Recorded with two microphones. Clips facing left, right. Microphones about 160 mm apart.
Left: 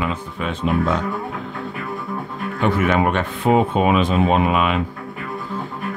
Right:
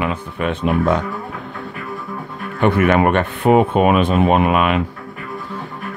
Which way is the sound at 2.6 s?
60° right (ahead or behind).